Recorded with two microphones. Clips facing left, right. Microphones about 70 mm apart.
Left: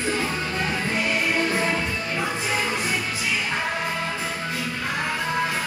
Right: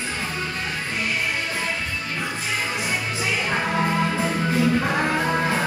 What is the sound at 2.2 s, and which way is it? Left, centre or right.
Music, centre.